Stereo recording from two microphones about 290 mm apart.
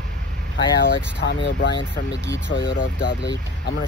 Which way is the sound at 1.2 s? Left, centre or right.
Left.